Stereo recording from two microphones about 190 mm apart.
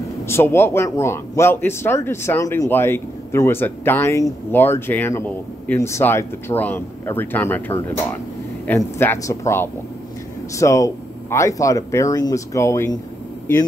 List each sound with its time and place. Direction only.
0.3 s speech: 15° left (ahead or behind)